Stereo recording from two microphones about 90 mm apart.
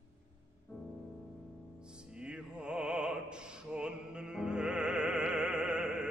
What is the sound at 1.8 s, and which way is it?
Music, 10° right (ahead or behind).